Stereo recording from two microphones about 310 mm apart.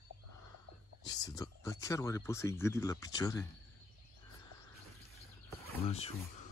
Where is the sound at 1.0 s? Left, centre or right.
Centre.